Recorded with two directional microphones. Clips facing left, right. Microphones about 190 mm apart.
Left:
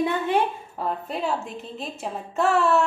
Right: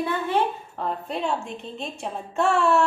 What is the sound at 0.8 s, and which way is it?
A woman's voice, centre (ahead or behind).